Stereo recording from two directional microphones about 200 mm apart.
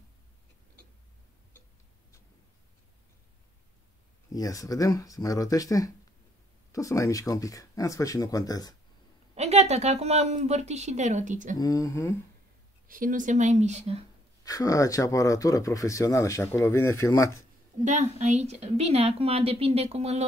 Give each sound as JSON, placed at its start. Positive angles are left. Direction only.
{"t": 4.3, "sound": "speech", "side_deg": 15}
{"t": 9.3, "sound": "a woman's voice", "side_deg": -30}
{"t": 11.5, "sound": "speech", "side_deg": 15}
{"t": 12.8, "sound": "a woman's voice", "side_deg": -45}
{"t": 14.4, "sound": "speech", "side_deg": 15}
{"t": 17.8, "sound": "a woman's voice", "side_deg": -35}